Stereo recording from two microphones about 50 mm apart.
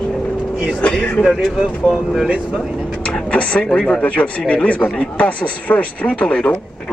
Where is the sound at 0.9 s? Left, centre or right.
Centre.